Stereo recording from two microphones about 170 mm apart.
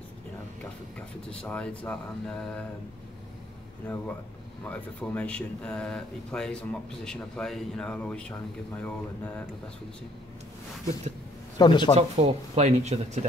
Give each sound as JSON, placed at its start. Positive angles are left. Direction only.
{"t": 0.9, "sound": "speech", "side_deg": 5}
{"t": 3.9, "sound": "speech", "side_deg": 10}
{"t": 11.5, "sound": "speech", "side_deg": 25}
{"t": 11.9, "sound": "speech", "side_deg": -40}